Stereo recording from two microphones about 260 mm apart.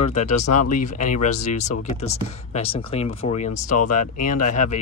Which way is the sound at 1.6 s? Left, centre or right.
Left.